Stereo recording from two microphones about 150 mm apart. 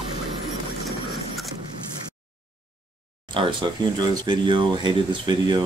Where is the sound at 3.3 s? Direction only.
30° right (ahead or behind).